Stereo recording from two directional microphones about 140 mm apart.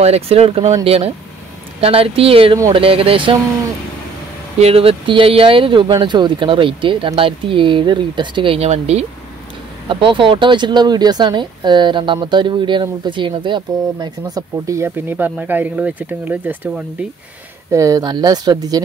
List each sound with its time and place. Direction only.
0.0 s speech: 50° right (ahead or behind)
4.6 s speech: 45° right (ahead or behind)
9.8 s speech: 35° right (ahead or behind)